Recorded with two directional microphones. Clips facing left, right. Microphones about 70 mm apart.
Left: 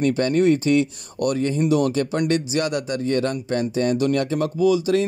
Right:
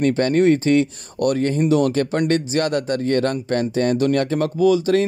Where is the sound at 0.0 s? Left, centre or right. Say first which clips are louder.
Right 2 dB; right.